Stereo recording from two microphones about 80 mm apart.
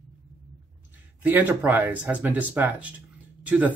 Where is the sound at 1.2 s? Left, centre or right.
Right.